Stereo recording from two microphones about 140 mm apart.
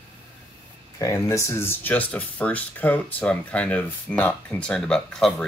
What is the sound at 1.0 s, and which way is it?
Speech, 20° left (ahead or behind).